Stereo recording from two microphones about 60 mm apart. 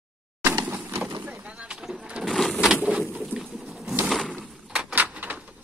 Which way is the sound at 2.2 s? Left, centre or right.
Centre.